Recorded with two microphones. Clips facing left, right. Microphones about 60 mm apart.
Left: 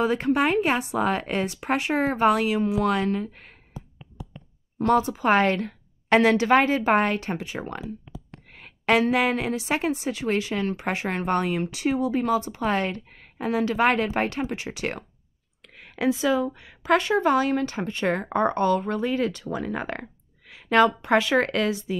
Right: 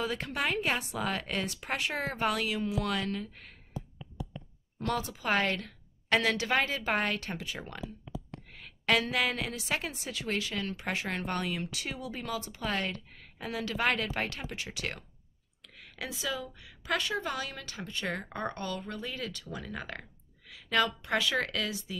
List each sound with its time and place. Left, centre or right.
0.0 s a woman's voice: left
4.8 s a woman's voice: left
15.6 s a sound: left
16.4 s speech: left